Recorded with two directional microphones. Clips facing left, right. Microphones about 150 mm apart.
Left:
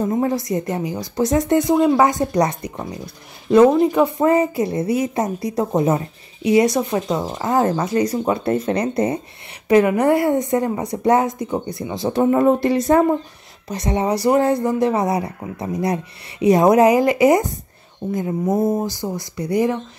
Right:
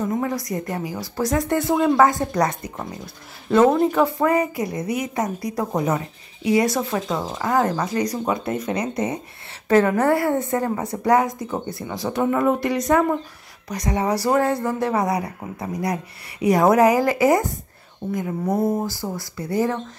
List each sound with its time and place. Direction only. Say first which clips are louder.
0.0 s speech: left 4 dB; 30° left (ahead or behind)
9.7 s speech: left 3 dB; 15° left (ahead or behind)